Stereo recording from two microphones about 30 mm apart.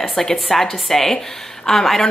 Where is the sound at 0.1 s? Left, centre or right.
Centre.